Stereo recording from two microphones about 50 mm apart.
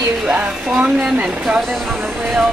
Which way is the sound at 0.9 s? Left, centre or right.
Right.